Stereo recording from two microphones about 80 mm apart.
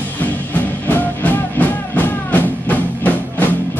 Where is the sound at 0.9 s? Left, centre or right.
Left.